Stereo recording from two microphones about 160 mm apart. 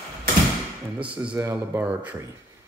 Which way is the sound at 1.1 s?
10° right (ahead or behind).